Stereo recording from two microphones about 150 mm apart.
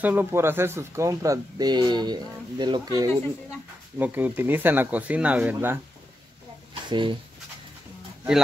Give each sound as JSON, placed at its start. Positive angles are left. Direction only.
{"t": 0.0, "sound": "speech", "side_deg": -10}
{"t": 4.0, "sound": "speech", "side_deg": -10}
{"t": 6.7, "sound": "a sound", "side_deg": -35}